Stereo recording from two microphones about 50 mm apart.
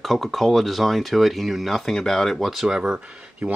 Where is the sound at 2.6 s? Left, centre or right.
Centre.